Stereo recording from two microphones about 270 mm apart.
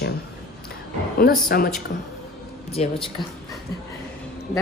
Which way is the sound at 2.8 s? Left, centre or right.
Left.